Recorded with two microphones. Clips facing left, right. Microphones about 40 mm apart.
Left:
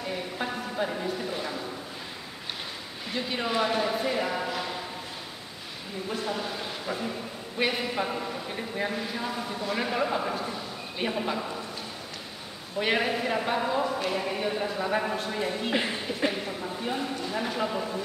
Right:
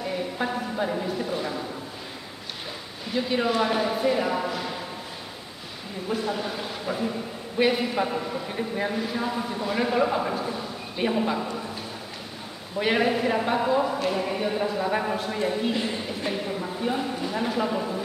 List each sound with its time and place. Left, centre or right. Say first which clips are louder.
0.0 s speech: right 4 dB; centre
3.1 s a man's voice: right 5 dB; centre
6.0 s a man's voice: right 4 dB; centre
12.7 s a man's voice: right 3 dB; centre
15.7 s a woman's voice: even; left
16.3 s a man's voice: right 2 dB; centre